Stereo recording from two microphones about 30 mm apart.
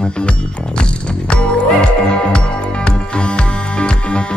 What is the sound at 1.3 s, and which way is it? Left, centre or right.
Music, left.